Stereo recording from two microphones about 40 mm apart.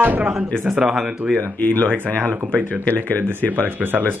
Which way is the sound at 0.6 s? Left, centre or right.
Centre.